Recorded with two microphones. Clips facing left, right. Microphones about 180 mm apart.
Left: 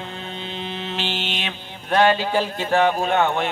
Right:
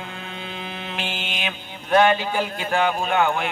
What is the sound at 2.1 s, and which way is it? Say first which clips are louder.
Speech: left 3 dB; 30° left (ahead or behind).